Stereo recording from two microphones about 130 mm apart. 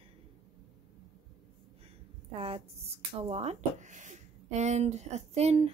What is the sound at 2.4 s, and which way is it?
Speech, 50° right (ahead or behind).